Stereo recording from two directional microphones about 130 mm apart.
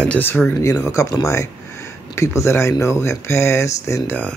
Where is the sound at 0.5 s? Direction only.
25° left (ahead or behind).